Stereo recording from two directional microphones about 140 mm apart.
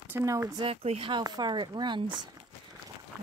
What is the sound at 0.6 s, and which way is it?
Speech, 45° right (ahead or behind).